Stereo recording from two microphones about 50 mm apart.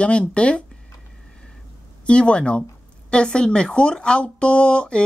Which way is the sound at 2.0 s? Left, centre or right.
Left.